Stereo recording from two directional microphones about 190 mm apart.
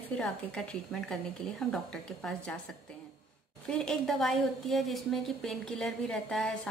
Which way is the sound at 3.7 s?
5° left (ahead or behind).